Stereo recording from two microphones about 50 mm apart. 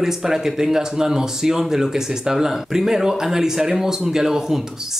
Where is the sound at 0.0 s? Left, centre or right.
Centre.